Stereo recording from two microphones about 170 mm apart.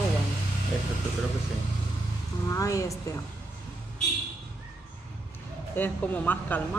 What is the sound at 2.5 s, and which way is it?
Speech, 20° left (ahead or behind).